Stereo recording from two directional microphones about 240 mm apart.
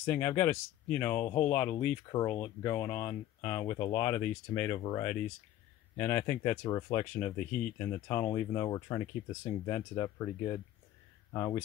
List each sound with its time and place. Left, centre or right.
0.0 s speech: centre